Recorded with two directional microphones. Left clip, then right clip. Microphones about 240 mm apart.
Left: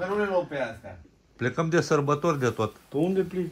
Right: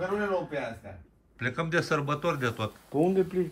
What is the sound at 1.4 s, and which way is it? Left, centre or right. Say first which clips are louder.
Speech: left 3 dB; centre.